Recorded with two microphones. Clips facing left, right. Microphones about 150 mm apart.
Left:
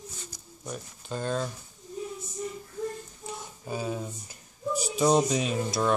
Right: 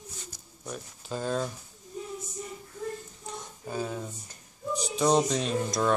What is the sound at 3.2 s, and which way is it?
Speech, 5° left (ahead or behind).